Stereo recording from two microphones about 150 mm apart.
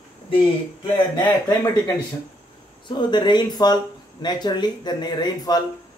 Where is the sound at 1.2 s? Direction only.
30° left (ahead or behind).